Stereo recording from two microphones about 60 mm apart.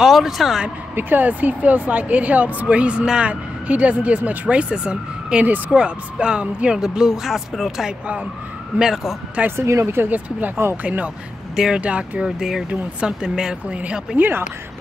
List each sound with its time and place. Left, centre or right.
0.0 s speech: centre
0.9 s speech: right; by 9.1 s centre
9.6 s speech: right
10.0 s speech: right
11.5 s speech: centre
11.8 s speech: right
12.3 s speech: centre